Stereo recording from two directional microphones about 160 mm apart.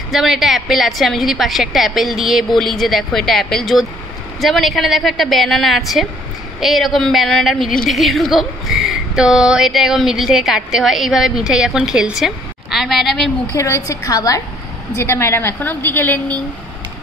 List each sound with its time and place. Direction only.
0.1 s a woman's voice: centre (ahead or behind)
13.6 s a woman's voice: 20° left (ahead or behind)